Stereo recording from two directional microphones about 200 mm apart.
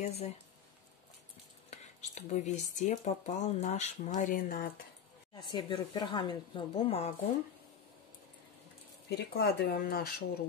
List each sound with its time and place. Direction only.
0.0 s speech: 30° left (ahead or behind)
1.7 s speech: 35° left (ahead or behind)
5.3 s speech: 20° left (ahead or behind)
9.1 s speech: 55° left (ahead or behind)